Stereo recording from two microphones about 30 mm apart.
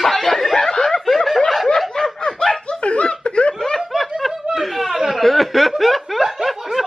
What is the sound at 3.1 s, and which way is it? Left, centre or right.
Laughter, left.